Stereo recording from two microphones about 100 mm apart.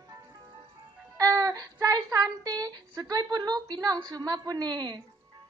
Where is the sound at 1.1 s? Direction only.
35° right (ahead or behind).